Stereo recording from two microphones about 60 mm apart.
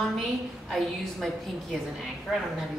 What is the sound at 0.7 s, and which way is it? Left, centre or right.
A woman's voice, centre.